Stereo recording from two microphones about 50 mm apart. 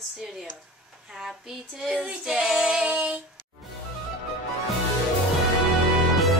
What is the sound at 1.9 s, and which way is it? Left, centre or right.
Child singing, centre.